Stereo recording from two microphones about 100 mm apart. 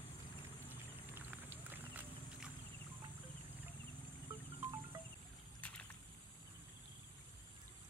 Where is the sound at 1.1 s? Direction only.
20° right (ahead or behind).